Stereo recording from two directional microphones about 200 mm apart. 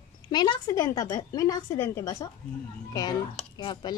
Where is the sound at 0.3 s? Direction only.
20° left (ahead or behind).